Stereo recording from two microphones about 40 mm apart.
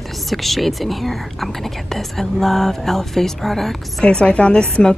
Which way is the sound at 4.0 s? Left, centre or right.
Left.